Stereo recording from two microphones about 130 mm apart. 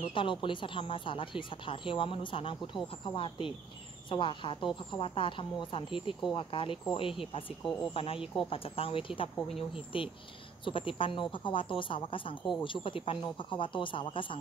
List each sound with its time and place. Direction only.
0.1 s speech: 40° left (ahead or behind)